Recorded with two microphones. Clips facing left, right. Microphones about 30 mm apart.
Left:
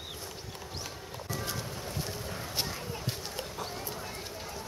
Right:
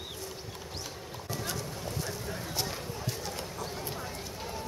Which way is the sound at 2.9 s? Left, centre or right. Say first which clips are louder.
Right 1 dB; left.